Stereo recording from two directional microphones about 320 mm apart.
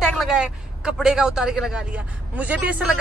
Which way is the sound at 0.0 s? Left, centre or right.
Centre.